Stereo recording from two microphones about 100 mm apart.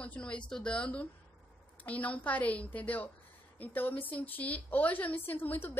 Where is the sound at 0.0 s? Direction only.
10° left (ahead or behind).